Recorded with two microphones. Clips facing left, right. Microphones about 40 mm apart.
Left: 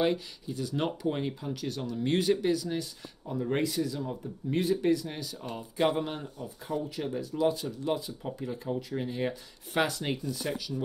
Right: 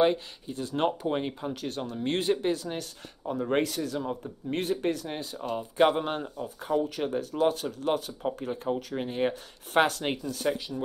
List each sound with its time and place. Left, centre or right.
0.5 s speech: right
0.8 s speech: right
1.5 s speech: right
5.0 s speech: right
10.2 s speech: right